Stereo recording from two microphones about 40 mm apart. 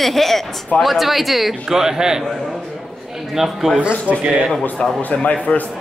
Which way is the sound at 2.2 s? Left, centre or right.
Centre.